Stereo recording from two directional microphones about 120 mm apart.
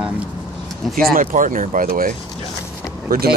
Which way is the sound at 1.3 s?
90° right.